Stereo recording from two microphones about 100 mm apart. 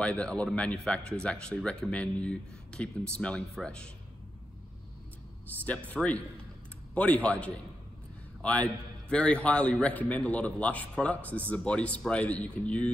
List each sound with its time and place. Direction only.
0.0 s speech: 10° left (ahead or behind)
5.9 s speech: 15° left (ahead or behind)